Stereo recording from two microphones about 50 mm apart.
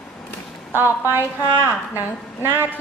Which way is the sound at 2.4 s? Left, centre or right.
Right.